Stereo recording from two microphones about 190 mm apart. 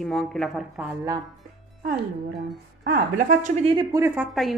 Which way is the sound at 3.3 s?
40° right (ahead or behind).